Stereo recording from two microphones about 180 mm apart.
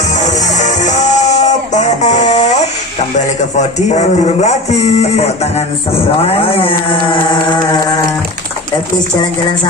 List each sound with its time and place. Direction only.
0.2 s music: 40° left (ahead or behind)
3.5 s speech: 40° left (ahead or behind)